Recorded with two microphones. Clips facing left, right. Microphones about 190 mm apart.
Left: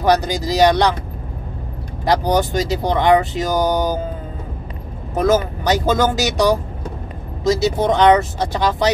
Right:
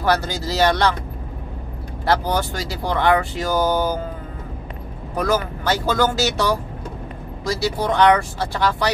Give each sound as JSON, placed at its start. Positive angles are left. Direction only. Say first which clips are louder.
{"t": 0.0, "sound": "speech", "louder": "left 4 dB", "side_deg": 15}
{"t": 2.0, "sound": "speech", "louder": "left 4 dB", "side_deg": 15}
{"t": 5.1, "sound": "speech", "louder": "left 5 dB", "side_deg": 20}